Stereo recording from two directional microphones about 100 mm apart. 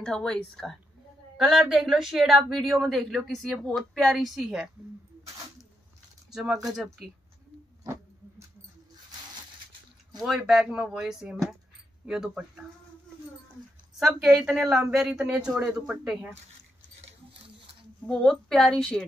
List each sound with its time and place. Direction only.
0.0 s speech: 5° left (ahead or behind)
6.3 s speech: 5° right (ahead or behind)
7.8 s a sound: 30° right (ahead or behind)
10.1 s speech: 5° right (ahead or behind)
13.9 s speech: 5° right (ahead or behind)
18.0 s speech: 5° left (ahead or behind)